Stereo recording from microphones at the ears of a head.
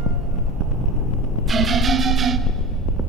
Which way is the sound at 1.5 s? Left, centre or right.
Right.